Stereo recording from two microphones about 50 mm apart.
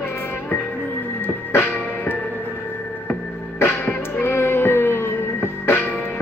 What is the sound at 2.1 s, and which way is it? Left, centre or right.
Music, left.